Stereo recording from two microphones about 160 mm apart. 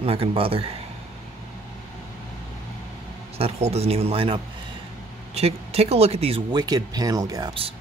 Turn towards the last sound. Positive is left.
turn(degrees=-30)  # may be behind; listen again after turning